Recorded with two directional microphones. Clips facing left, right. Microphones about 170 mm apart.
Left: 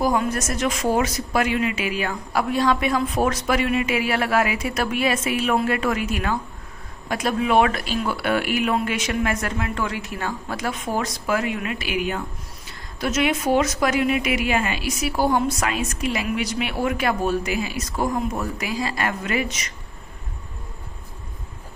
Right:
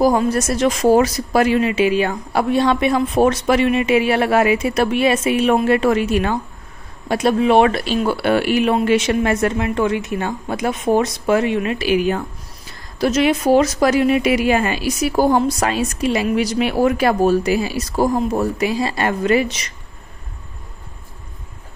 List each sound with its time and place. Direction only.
0.0 s a woman's voice: 35° right (ahead or behind)